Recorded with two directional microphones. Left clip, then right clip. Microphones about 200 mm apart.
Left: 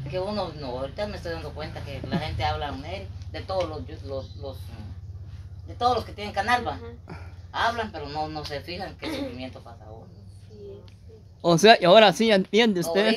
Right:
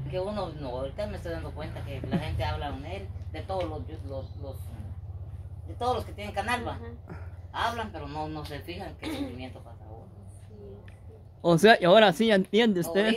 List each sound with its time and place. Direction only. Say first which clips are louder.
0.1 s speech: left 3 dB; 5° left (ahead or behind)
5.8 s speech: left 6 dB; 5° left (ahead or behind)
11.4 s speech: left 3 dB; 10° right (ahead or behind)